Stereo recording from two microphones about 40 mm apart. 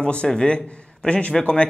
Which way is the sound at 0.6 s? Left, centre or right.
Left.